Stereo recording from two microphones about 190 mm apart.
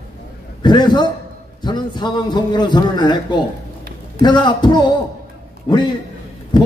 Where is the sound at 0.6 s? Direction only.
25° left (ahead or behind).